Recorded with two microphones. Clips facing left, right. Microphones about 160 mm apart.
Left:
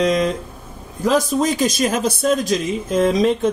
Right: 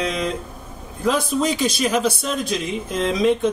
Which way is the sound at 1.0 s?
45° left (ahead or behind).